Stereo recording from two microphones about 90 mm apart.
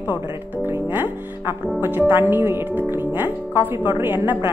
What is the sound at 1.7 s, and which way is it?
Speech, 20° right (ahead or behind).